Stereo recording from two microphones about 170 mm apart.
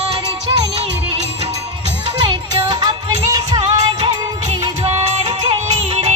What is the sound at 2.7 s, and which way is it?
Music, 25° right (ahead or behind).